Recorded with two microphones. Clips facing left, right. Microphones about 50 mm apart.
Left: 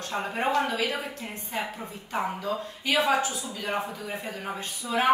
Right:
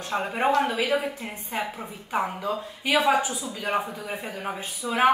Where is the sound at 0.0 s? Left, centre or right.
Centre.